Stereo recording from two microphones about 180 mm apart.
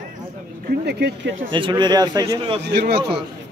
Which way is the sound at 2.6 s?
70° right (ahead or behind).